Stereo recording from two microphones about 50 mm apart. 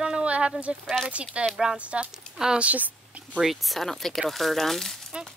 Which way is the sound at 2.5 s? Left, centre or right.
Right.